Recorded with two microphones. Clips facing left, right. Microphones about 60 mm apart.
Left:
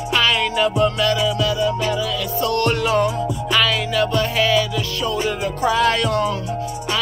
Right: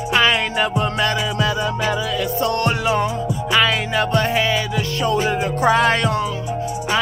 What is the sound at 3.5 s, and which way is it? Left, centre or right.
Music, right.